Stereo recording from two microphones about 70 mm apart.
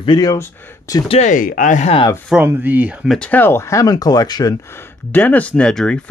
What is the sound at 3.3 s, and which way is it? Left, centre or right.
Speech, left.